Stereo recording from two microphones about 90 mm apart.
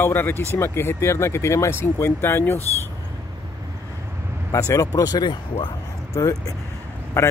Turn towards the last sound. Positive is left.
turn(degrees=30)  # may be behind; listen again after turning